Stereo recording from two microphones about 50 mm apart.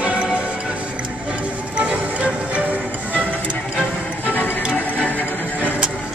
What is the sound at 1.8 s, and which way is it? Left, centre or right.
Music, right.